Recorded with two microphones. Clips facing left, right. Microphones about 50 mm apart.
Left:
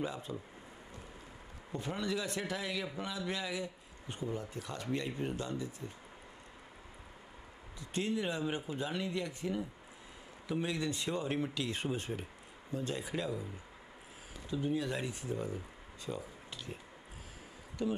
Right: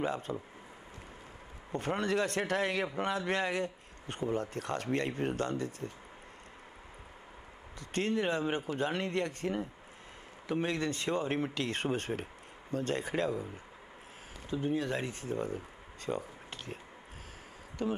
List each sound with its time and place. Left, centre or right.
0.0 s a man's voice: right
1.7 s a man's voice: right
7.8 s a man's voice: right
14.8 s speech: right
17.8 s speech: right